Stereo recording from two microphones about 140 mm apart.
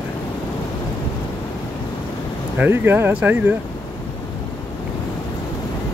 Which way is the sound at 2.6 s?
15° right (ahead or behind).